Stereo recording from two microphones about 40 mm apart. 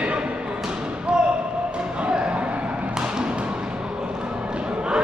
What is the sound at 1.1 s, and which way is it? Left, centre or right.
Basketball bounce, centre.